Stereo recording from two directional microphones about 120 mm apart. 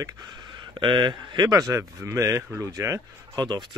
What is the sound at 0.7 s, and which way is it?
Speech, 40° right (ahead or behind).